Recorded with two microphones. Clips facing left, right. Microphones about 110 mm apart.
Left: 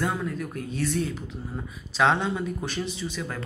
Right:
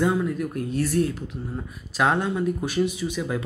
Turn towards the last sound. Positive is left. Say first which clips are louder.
# right 5 dB
turn(degrees=-15)  # may be behind; listen again after turning